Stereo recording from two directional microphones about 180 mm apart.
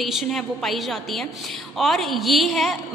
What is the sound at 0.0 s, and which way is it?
A woman's voice, centre (ahead or behind).